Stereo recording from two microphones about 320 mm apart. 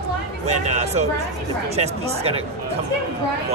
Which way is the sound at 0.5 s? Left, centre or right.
Right.